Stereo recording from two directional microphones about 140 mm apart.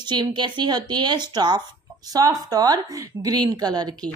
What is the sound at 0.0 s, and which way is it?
A woman's voice, 30° right (ahead or behind).